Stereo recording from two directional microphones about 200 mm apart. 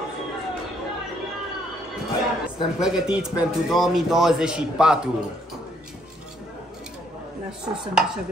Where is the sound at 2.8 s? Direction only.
5° right (ahead or behind).